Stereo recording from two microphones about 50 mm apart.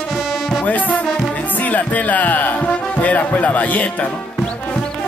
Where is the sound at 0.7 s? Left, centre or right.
Left.